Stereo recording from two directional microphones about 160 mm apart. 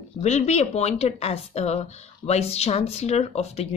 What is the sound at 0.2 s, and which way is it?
Speech, 45° left (ahead or behind).